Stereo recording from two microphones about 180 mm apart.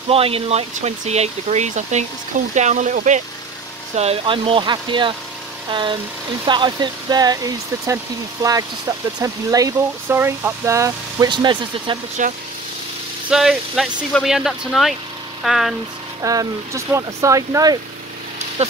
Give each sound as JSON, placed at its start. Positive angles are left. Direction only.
{"t": 0.1, "sound": "speech", "side_deg": -30}
{"t": 12.2, "sound": "speech", "side_deg": -45}
{"t": 13.3, "sound": "speech", "side_deg": 0}
{"t": 16.2, "sound": "speech", "side_deg": -20}